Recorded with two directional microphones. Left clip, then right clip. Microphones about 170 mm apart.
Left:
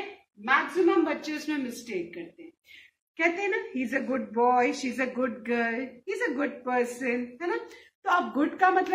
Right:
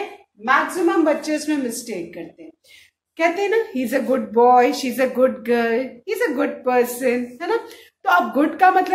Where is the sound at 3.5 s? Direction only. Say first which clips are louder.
Right 10 dB; 35° right (ahead or behind); by 8.9 s 20° right (ahead or behind).